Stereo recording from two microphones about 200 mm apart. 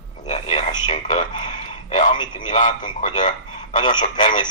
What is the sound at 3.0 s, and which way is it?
Telephone, 35° left (ahead or behind).